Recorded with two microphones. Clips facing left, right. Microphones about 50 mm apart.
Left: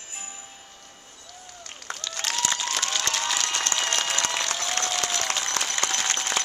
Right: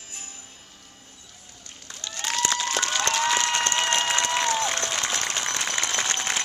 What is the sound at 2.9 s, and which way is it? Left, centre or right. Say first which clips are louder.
Applause: right 7 dB; right.